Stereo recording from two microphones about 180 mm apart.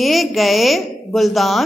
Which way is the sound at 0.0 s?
Centre (ahead or behind).